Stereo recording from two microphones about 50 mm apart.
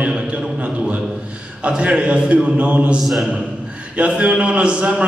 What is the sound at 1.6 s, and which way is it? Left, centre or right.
A man's voice, right.